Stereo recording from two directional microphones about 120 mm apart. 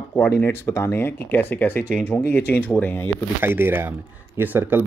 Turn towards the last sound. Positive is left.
turn(degrees=-15)  # may be behind; listen again after turning